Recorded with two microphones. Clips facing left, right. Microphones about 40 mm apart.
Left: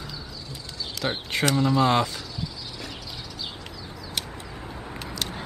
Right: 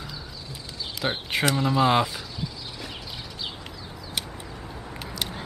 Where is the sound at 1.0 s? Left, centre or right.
Centre.